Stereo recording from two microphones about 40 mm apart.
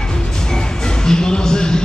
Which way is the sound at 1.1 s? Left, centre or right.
Centre.